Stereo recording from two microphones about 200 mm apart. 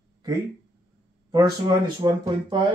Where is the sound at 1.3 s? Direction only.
20° right (ahead or behind).